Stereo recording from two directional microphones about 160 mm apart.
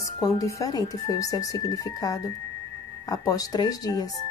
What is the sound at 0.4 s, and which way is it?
Speech, 20° left (ahead or behind).